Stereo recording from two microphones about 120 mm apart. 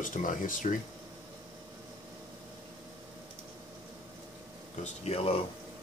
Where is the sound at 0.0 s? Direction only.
90° left.